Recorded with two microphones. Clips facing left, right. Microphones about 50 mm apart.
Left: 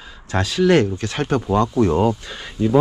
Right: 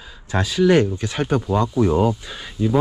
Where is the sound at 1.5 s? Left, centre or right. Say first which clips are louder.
Left 3 dB; left.